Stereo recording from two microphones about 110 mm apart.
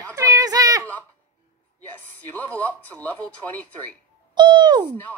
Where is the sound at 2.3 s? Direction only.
15° left (ahead or behind).